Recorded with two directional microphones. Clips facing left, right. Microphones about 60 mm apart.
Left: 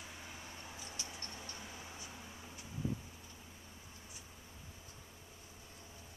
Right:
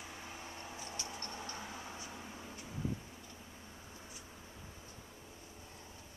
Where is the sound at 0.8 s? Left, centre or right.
Right.